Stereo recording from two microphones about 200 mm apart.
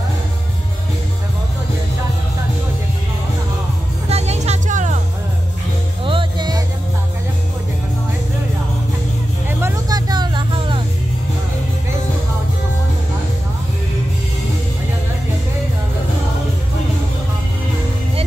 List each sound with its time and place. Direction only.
4.1 s music: 35° right (ahead or behind)
6.0 s music: 25° right (ahead or behind)
9.5 s vehicle: 10° right (ahead or behind)